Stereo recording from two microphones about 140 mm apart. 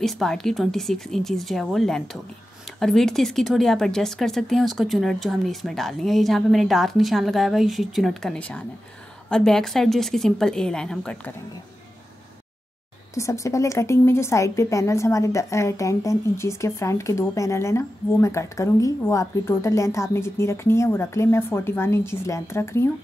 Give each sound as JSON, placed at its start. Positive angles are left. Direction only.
{"t": 0.0, "sound": "speech", "side_deg": 5}
{"t": 13.1, "sound": "a woman's voice", "side_deg": 20}